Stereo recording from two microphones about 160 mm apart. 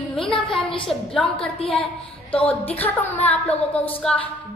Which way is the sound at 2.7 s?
40° left (ahead or behind).